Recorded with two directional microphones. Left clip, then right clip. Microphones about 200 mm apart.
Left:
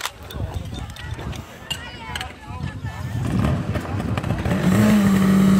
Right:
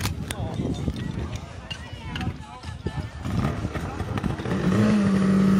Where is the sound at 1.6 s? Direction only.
45° left (ahead or behind).